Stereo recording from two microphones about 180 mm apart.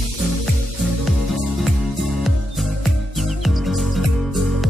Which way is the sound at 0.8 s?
Centre (ahead or behind).